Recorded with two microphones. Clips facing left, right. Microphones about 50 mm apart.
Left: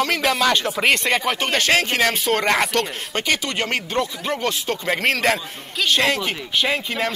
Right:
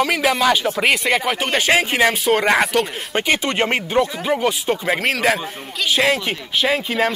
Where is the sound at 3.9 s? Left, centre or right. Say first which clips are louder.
Right 7 dB; centre.